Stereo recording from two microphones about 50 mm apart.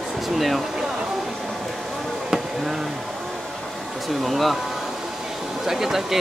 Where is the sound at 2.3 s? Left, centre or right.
Centre.